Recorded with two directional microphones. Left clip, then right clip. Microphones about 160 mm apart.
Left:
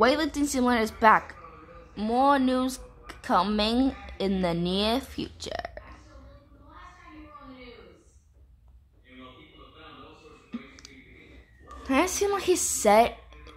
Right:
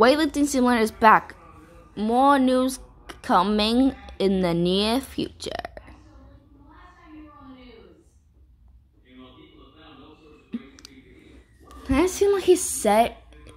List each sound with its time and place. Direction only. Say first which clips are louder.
0.0 s a woman's voice: right 5 dB; 20° right (ahead or behind)
11.8 s speech: right 4 dB; 5° right (ahead or behind)